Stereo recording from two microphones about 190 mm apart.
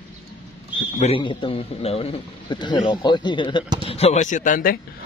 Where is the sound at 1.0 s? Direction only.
30° left (ahead or behind); by 4.8 s 45° left (ahead or behind).